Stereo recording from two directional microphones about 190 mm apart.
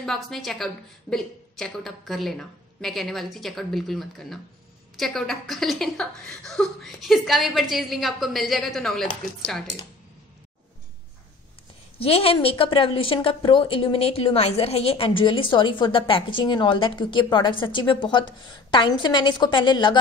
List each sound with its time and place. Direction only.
0.0 s a woman's voice: centre (ahead or behind)
12.0 s a woman's voice: 30° left (ahead or behind)